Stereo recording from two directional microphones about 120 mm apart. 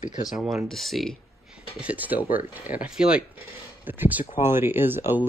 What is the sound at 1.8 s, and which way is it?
Speech, 15° right (ahead or behind).